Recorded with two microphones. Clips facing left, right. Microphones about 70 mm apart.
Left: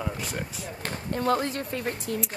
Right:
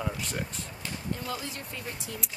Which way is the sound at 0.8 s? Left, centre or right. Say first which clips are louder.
Left 9 dB; left.